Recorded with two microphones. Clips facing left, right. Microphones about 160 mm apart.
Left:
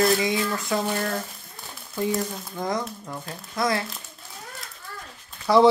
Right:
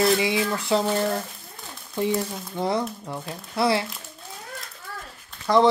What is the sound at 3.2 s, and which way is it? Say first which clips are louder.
Speech: right 3 dB; 30° right (ahead or behind).